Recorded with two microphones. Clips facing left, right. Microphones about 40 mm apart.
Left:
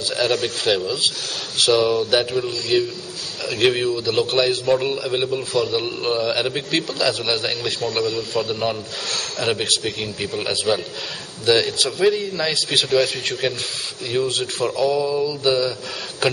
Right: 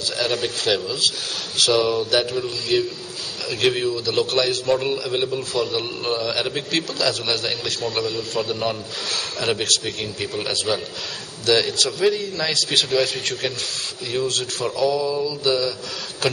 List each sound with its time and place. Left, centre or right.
0.1 s a man's voice: centre
15.0 s a man's voice: centre